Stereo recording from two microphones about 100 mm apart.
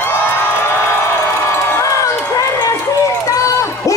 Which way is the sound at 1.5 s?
30° left (ahead or behind).